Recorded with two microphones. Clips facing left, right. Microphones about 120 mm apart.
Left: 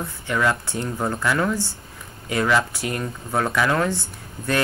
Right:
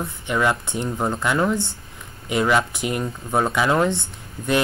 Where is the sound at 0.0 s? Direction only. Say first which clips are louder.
Right 1 dB; 20° right (ahead or behind).